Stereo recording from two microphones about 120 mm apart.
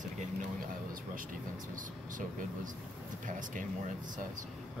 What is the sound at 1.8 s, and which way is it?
Speech, 90° right.